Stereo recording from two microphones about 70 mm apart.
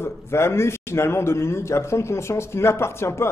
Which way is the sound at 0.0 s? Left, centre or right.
Left.